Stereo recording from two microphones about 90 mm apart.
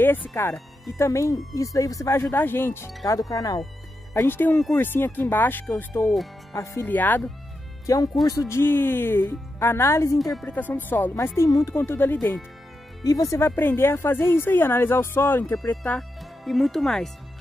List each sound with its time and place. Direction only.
0.0 s speech: 25° left (ahead or behind)
2.3 s speech: 25° left (ahead or behind)
3.1 s speech: 40° left (ahead or behind)
4.1 s speech: 30° left (ahead or behind)
6.9 s speech: 20° left (ahead or behind)
7.8 s speech: 40° left (ahead or behind)
8.5 s speech: 25° left (ahead or behind)
11.3 s speech: 35° left (ahead or behind)
13.0 s speech: 40° left (ahead or behind)
13.6 s speech: 25° left (ahead or behind)
16.0 s speech: centre (ahead or behind)